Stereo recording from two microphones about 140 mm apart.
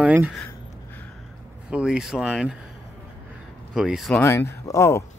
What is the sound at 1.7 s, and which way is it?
Speech, 5° right (ahead or behind).